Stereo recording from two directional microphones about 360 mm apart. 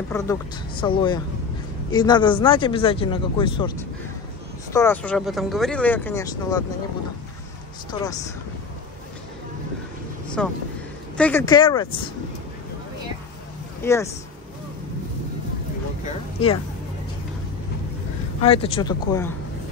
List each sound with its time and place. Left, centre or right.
0.1 s a man's voice: centre
4.7 s speech: centre
7.9 s a man's voice: centre
10.4 s a man's voice: centre
13.8 s a man's voice: centre
16.4 s a man's voice: centre
18.4 s a man's voice: centre